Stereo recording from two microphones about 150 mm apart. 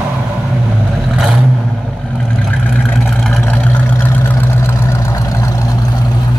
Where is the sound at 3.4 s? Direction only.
10° left (ahead or behind).